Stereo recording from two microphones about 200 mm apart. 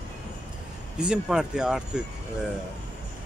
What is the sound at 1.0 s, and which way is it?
A man's voice, 5° right (ahead or behind).